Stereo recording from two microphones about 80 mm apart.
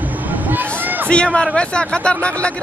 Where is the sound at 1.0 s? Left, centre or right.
Centre.